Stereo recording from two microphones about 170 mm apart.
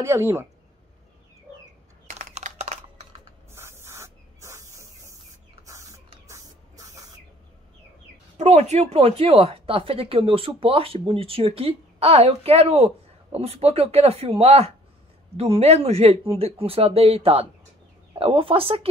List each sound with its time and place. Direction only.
0.0 s speech: 15° right (ahead or behind)
2.0 s a sound: 40° right (ahead or behind)
3.5 s spray: 15° right (ahead or behind)
8.4 s speech: 40° right (ahead or behind)